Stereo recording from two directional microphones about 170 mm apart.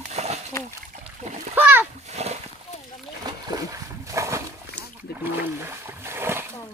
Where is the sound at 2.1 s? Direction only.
40° right (ahead or behind).